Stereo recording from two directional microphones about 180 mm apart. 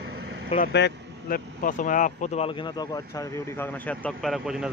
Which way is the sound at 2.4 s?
25° left (ahead or behind).